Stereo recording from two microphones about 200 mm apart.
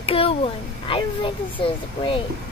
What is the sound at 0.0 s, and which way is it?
Speech, 30° left (ahead or behind).